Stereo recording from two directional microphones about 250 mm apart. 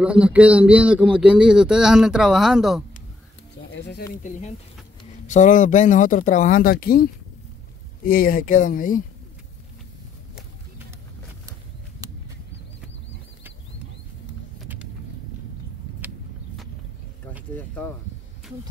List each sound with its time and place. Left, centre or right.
0.0 s speech: centre
3.7 s speech: left
17.6 s a sound: centre